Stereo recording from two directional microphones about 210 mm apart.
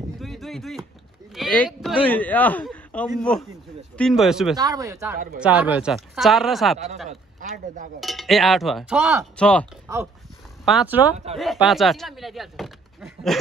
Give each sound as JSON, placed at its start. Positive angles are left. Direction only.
{"t": 0.2, "sound": "a sound", "side_deg": 0}
{"t": 1.3, "sound": "speech", "side_deg": 0}
{"t": 4.6, "sound": "speech", "side_deg": -15}
{"t": 7.1, "sound": "speech", "side_deg": -35}
{"t": 8.0, "sound": "speech", "side_deg": 0}